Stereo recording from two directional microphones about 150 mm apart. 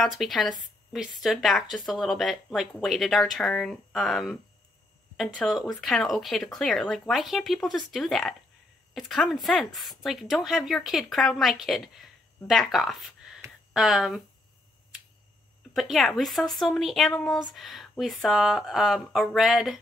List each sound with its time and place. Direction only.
0.0 s a woman's voice: centre (ahead or behind)
15.7 s a woman's voice: centre (ahead or behind)